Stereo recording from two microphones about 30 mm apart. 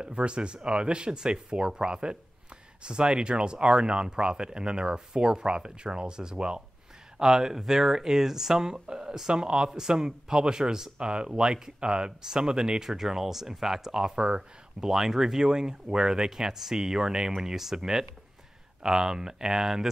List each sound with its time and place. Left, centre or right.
0.0 s speech: right
7.2 s speech: centre
14.0 s speech: right
14.8 s speech: centre